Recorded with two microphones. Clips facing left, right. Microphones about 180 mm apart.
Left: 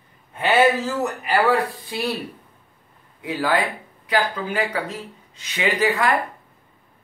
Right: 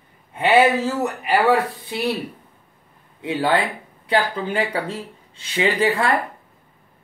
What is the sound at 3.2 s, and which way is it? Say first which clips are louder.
Speech: right 2 dB; 25° right (ahead or behind).